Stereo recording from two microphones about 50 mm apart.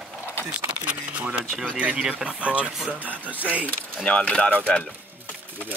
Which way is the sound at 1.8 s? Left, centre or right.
Right.